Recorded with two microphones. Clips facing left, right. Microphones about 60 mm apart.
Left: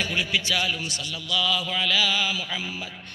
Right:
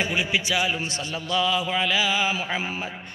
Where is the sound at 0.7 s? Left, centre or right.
Right.